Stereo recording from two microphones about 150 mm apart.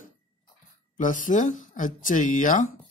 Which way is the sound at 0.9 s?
60° left (ahead or behind).